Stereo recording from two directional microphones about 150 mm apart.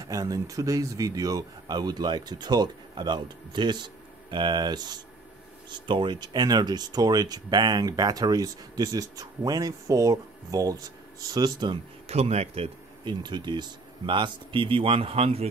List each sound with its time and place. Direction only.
0.0 s speech: 25° right (ahead or behind)
12.1 s speech: 45° right (ahead or behind)